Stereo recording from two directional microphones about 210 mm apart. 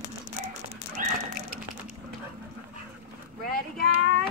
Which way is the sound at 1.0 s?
40° right (ahead or behind).